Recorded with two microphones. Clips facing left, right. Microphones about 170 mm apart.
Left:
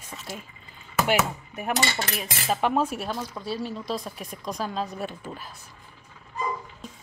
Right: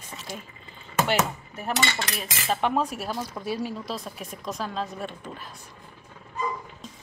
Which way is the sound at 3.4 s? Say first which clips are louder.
Right 3 dB; 15° right (ahead or behind).